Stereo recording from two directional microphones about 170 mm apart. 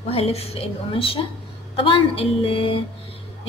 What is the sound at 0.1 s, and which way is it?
A woman's voice, 35° left (ahead or behind).